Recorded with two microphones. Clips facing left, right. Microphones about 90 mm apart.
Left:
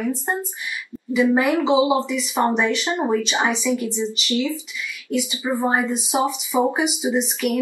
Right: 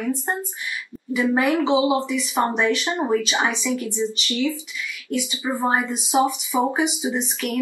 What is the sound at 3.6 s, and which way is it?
Speech, 15° left (ahead or behind).